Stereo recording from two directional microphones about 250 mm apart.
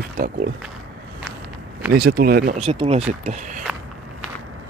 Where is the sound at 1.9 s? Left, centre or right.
Right.